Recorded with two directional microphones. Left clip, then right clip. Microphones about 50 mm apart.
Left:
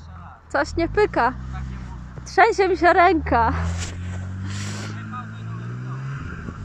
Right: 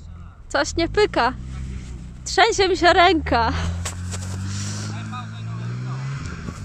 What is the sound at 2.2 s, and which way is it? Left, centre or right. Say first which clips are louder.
A woman's voice: even; centre.